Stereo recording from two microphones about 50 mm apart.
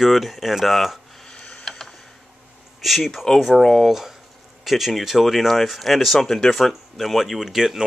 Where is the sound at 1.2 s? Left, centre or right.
Centre.